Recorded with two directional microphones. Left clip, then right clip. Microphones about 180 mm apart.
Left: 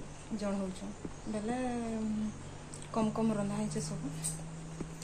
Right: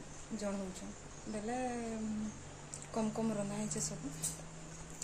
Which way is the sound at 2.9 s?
10° right (ahead or behind).